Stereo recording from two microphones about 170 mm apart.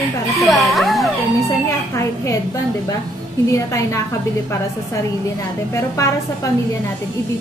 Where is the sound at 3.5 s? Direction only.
20° left (ahead or behind).